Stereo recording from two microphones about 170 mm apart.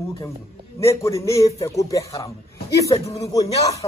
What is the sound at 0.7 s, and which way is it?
A man's voice, 15° left (ahead or behind).